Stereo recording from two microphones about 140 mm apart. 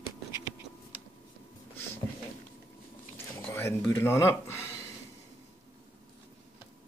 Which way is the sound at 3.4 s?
15° left (ahead or behind).